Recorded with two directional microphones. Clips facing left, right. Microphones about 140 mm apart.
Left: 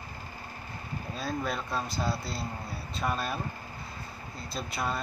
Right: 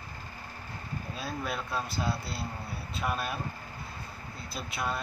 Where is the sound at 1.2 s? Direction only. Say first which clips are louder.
Left 3 dB; 5° right (ahead or behind).